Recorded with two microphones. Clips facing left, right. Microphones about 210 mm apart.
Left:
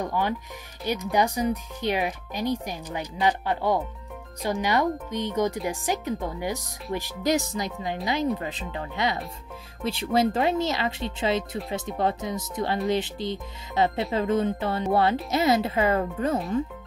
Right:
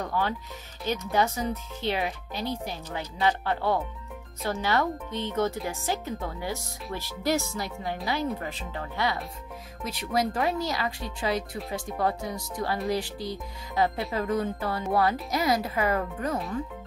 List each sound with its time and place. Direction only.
0.0 s speech: 15° left (ahead or behind)